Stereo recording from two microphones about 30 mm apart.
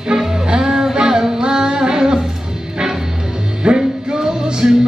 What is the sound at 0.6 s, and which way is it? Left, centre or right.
Music, centre.